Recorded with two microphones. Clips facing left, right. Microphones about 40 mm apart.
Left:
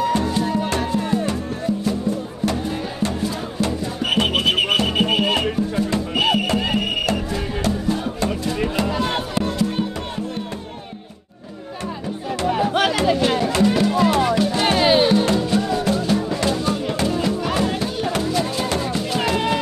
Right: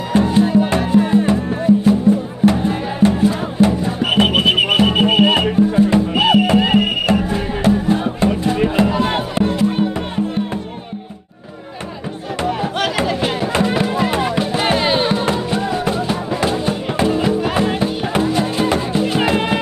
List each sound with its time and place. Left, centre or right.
0.1 s music: right
13.4 s music: right
15.1 s music: centre